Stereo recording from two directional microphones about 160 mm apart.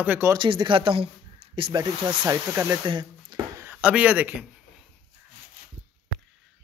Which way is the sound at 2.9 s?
25° right (ahead or behind).